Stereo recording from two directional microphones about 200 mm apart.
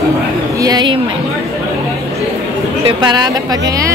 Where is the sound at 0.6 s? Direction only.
20° right (ahead or behind).